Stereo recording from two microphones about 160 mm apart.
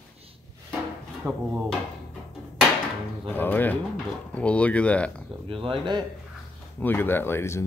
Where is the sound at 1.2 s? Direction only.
5° right (ahead or behind).